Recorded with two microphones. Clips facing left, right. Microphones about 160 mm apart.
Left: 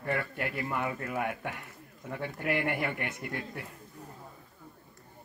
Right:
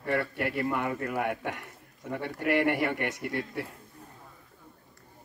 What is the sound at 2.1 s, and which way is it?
Speech, 60° right (ahead or behind).